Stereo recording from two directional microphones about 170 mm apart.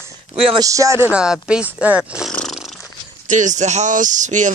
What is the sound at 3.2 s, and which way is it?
Speech, 45° right (ahead or behind).